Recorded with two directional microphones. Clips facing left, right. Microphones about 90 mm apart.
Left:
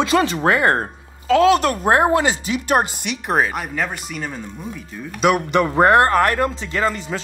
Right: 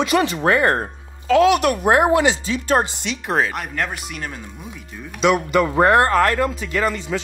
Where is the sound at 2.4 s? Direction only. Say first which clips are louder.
Even; 15° left (ahead or behind); by 5.2 s 5° right (ahead or behind).